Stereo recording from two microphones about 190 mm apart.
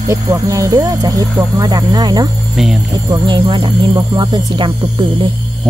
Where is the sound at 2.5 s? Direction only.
Centre (ahead or behind).